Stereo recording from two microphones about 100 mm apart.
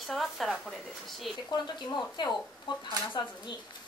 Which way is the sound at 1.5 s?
45° left (ahead or behind).